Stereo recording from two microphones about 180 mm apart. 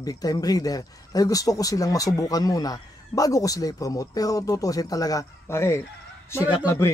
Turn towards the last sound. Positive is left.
turn(degrees=15)  # may be behind; listen again after turning